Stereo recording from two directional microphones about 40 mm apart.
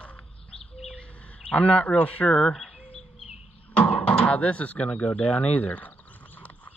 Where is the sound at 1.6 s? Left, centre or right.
Left.